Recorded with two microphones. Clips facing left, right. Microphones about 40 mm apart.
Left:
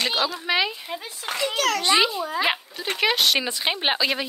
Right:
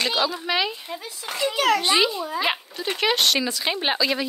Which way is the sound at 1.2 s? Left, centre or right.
Left.